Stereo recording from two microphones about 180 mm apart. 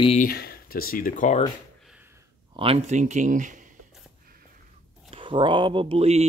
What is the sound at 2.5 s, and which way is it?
Speech, 35° right (ahead or behind).